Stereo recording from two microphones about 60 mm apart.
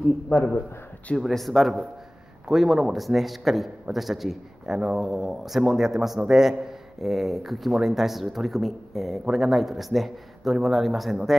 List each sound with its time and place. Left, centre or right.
0.3 s a man's voice: centre
1.2 s a man's voice: centre